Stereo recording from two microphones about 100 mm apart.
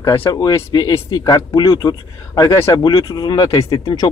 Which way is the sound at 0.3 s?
40° left (ahead or behind).